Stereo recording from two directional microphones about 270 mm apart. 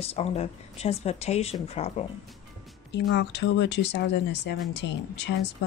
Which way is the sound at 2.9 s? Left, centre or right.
Left.